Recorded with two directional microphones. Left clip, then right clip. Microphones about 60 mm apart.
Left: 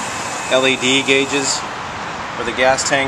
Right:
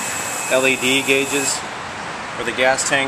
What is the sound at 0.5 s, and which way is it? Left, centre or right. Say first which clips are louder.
Speech: left 2 dB; left.